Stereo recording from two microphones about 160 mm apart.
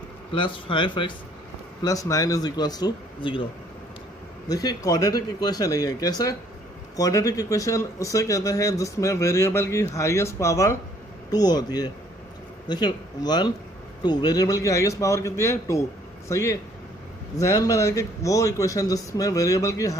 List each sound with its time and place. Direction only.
0.3 s speech: 30° left (ahead or behind)
4.5 s speech: 25° left (ahead or behind)